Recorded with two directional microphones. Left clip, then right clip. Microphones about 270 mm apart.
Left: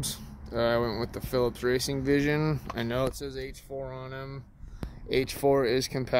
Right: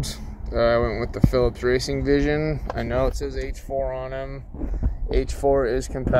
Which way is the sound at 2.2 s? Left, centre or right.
Centre.